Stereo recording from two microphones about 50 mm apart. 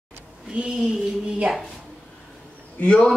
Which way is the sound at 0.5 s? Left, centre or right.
Right.